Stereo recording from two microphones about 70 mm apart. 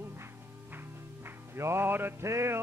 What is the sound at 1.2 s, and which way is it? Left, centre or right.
Music, right.